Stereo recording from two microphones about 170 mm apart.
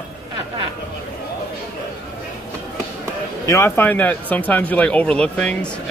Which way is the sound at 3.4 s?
15° left (ahead or behind).